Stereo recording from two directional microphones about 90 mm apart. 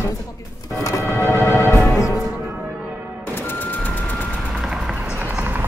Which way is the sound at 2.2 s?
10° right (ahead or behind).